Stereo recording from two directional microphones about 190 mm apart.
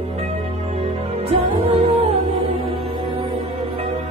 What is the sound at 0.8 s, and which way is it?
Music, 30° right (ahead or behind).